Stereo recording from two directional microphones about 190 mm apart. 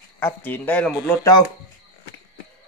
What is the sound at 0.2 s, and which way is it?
Speech, 10° left (ahead or behind).